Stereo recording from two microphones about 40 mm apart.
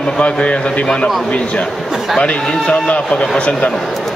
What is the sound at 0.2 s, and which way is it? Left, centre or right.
Speech, left.